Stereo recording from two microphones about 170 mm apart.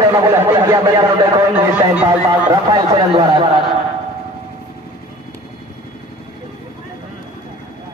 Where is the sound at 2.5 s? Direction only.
25° right (ahead or behind).